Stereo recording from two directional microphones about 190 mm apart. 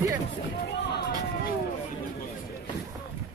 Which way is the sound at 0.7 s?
60° left (ahead or behind).